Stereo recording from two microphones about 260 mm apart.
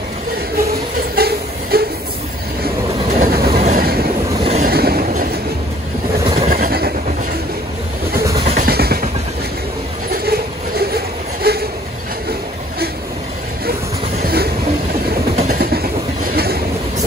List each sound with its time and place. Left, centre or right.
1.1 s a sound: right
2.6 s train: right
4.3 s vehicle: right
4.6 s train: right
6.2 s vehicle: right
6.5 s vehicle: right
8.5 s vehicle: right
10.1 s a sound: right
13.7 s a sound: right
15.3 s train: right